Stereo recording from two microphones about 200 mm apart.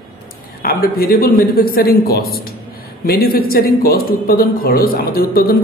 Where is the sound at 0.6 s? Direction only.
50° left (ahead or behind).